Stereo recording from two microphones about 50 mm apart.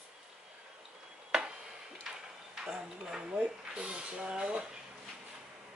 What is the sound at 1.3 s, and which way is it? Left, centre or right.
Tick-tock, centre.